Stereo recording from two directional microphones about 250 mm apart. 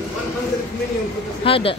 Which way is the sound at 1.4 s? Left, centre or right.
Left.